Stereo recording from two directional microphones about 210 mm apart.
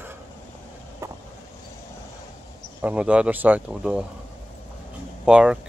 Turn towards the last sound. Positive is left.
turn(degrees=-5)  # may be behind; listen again after turning